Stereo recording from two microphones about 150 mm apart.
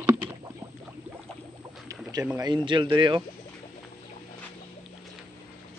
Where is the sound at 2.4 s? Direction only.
30° right (ahead or behind).